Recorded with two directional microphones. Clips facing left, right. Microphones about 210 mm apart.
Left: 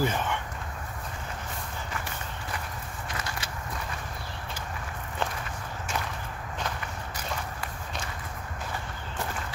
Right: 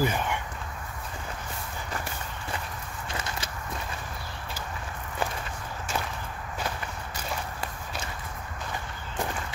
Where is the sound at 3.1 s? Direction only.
30° right (ahead or behind).